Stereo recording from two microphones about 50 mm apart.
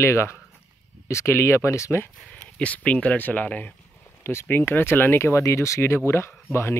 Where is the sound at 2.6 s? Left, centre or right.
Left.